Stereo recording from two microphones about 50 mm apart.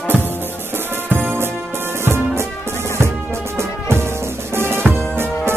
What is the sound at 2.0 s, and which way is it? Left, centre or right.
Music, right.